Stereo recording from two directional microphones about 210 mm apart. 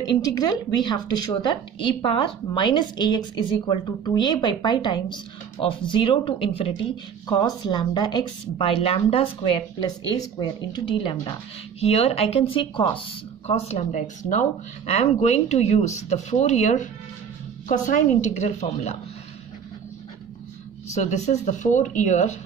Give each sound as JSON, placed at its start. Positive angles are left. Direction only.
{"t": 0.0, "sound": "a woman's voice", "side_deg": 20}
{"t": 20.9, "sound": "speech", "side_deg": 35}